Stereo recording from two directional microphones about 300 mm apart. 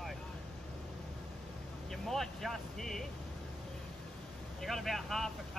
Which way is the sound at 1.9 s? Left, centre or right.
Centre.